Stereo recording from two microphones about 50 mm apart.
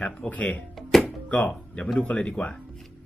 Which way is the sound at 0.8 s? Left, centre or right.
Centre.